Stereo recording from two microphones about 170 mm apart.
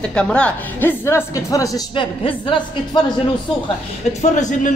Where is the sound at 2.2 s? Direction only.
30° left (ahead or behind).